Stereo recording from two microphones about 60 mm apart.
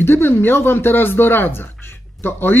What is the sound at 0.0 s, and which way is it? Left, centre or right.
Speech, left.